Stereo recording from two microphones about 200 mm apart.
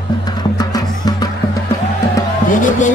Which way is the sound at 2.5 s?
40° left (ahead or behind).